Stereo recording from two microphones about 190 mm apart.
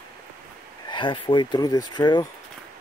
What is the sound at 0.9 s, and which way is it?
Speech, 25° left (ahead or behind).